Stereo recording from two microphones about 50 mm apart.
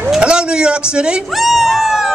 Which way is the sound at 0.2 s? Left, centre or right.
Centre.